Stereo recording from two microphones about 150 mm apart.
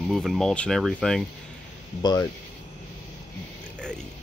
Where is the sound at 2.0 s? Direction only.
30° left (ahead or behind).